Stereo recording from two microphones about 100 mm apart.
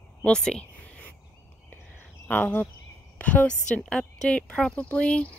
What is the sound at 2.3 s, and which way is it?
A woman's voice, 20° left (ahead or behind).